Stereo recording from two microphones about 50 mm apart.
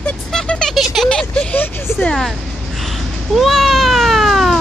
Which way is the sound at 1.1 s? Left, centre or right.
Centre.